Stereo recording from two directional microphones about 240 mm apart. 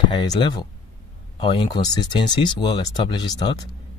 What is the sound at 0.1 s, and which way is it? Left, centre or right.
Speech, centre.